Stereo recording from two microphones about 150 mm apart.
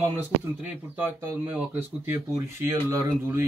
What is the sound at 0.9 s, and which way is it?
Speech, 15° right (ahead or behind).